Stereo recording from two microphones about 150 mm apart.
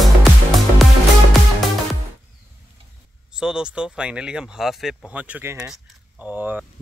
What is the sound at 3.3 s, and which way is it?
Speech, 5° right (ahead or behind).